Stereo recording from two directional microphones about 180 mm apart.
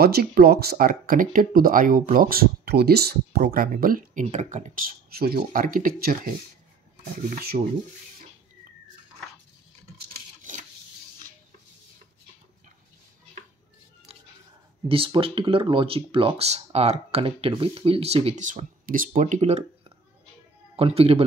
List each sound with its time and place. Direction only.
0.0 s speech: 60° right (ahead or behind)
9.9 s a sound: 45° right (ahead or behind)
14.9 s speech: 30° right (ahead or behind)